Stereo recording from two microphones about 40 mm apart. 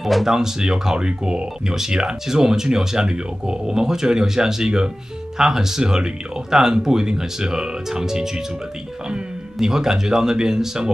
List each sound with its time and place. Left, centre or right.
0.0 s speech: centre
9.6 s speech: centre